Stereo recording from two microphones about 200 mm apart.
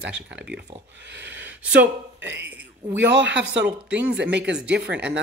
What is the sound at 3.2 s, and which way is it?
Speech, 65° right (ahead or behind).